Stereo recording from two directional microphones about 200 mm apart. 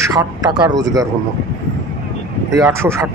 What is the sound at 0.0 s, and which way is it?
Speech, 20° right (ahead or behind).